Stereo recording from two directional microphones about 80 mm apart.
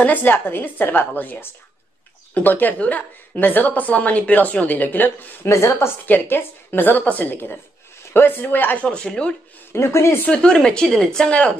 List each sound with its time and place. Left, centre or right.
0.0 s a woman's voice: left
5.5 s a woman's voice: left
8.9 s a woman's voice: centre
9.7 s speech: left
10.2 s a woman's voice: centre